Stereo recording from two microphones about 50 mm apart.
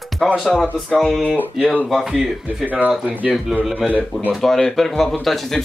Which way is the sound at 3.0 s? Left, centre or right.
Right.